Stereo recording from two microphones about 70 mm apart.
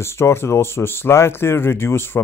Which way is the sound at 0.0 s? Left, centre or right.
Left.